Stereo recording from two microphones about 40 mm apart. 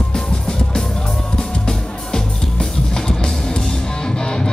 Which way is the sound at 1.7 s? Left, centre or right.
Centre.